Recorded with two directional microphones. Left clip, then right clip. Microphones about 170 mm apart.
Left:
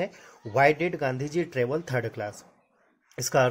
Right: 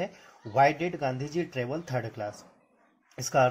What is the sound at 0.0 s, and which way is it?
Speech, 45° left (ahead or behind).